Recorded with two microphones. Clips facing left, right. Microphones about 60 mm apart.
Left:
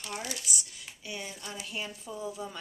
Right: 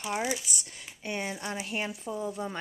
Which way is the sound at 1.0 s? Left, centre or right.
Right.